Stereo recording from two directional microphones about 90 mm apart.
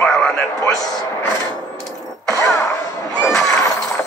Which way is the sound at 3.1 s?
5° left (ahead or behind).